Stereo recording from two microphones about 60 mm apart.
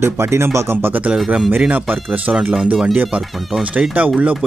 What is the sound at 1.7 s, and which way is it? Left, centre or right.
Speech, right.